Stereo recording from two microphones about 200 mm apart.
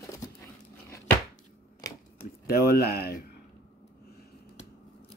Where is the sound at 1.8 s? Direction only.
20° left (ahead or behind).